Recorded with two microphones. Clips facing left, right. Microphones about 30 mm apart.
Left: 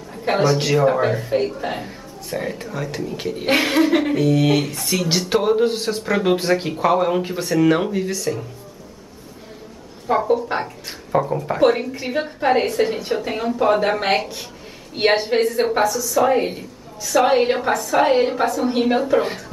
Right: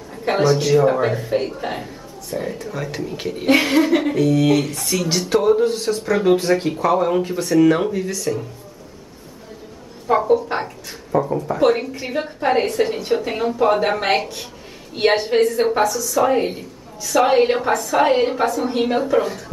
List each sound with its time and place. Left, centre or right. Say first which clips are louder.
0.1 s a man's voice: right 1 dB; centre
2.3 s speech: even; left
2.7 s a woman's voice: even; centre
3.5 s a woman's voice: even; centre
5.3 s a woman's voice: right 2 dB; centre
10.0 s a woman's voice: right 2 dB; centre
11.1 s speech: even; left
11.6 s a woman's voice: left 1 dB; centre